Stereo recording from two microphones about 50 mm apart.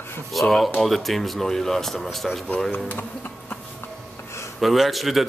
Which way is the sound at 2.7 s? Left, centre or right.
Left.